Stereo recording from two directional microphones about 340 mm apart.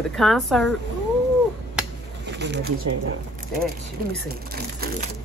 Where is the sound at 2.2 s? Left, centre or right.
Right.